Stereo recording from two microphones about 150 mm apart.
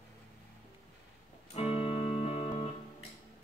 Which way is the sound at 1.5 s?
40° left (ahead or behind).